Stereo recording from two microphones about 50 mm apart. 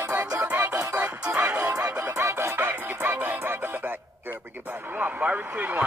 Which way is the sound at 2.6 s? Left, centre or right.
Right.